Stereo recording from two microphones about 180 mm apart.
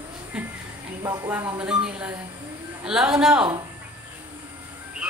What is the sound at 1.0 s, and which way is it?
Speech, 20° right (ahead or behind).